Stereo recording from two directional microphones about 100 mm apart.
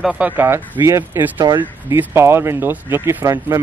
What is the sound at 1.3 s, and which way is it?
Speech, 50° right (ahead or behind).